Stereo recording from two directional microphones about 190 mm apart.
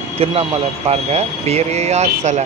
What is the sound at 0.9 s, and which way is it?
A man's voice, 35° right (ahead or behind).